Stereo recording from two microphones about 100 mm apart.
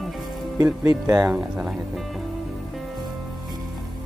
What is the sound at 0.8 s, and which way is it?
Speech, 40° right (ahead or behind).